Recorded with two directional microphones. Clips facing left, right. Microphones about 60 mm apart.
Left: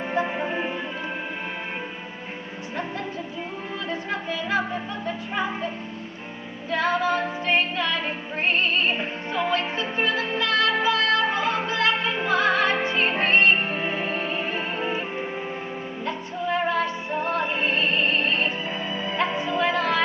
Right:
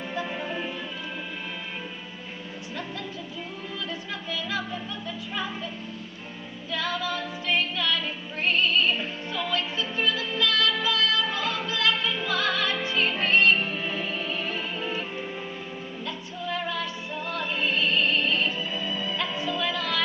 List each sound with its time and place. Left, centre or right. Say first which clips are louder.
0.1 s music: left 6 dB; left
3.9 s music: left 8 dB; left
6.7 s music: left 7 dB; left